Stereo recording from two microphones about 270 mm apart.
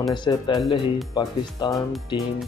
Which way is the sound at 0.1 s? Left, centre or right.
Centre.